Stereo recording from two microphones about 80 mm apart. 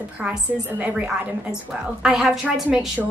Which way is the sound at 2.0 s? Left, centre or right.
Centre.